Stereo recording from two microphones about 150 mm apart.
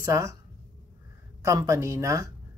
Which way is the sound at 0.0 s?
20° right (ahead or behind).